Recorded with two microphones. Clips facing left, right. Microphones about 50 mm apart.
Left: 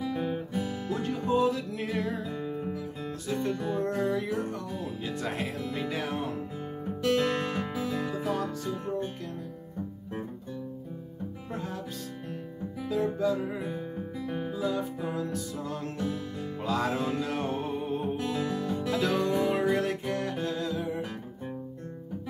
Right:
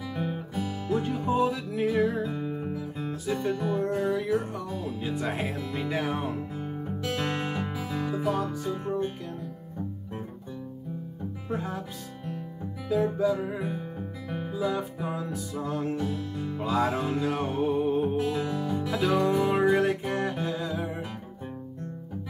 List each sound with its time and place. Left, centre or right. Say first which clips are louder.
0.8 s music: right 5 dB; centre
1.8 s music: right 7 dB; centre
2.0 s music: right 4 dB; right
4.1 s music: right 3 dB; centre
8.4 s music: right 2 dB; centre
11.5 s speech: right 5 dB; centre
12.8 s music: right 3 dB; centre
14.6 s music: right 3 dB; centre
18.4 s music: right 1 dB; centre
20.7 s music: even; centre